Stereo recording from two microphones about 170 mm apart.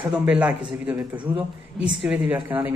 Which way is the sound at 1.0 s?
30° right (ahead or behind).